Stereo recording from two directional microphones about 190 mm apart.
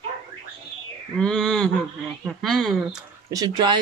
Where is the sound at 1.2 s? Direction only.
5° left (ahead or behind).